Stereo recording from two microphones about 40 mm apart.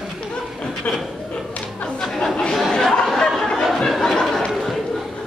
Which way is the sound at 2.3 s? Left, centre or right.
Centre.